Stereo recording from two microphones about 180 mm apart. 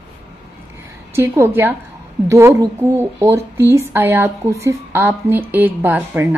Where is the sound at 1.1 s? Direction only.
15° right (ahead or behind).